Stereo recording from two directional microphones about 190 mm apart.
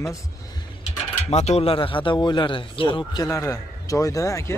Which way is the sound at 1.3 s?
35° left (ahead or behind).